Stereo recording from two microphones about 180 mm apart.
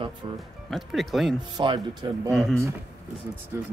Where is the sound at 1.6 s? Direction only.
25° right (ahead or behind).